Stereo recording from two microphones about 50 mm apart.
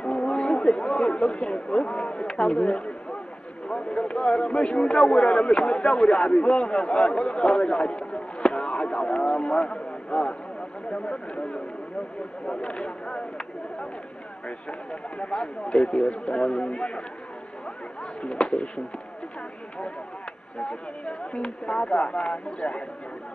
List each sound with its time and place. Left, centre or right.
0.2 s a sound: left
1.3 s speech: left
4.9 s a man's voice: centre
6.1 s a man's voice: centre
14.7 s speech: left
15.7 s a man's voice: centre
16.0 s speech: centre
18.2 s speech: centre
20.6 s speech: left